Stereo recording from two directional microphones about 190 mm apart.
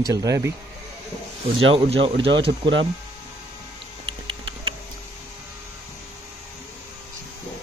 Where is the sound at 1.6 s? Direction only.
30° right (ahead or behind).